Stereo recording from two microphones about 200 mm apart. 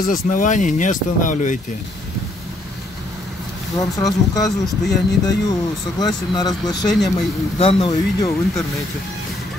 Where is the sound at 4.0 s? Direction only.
20° left (ahead or behind).